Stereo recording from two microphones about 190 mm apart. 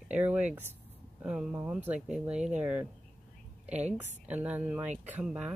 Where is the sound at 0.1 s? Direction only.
5° right (ahead or behind).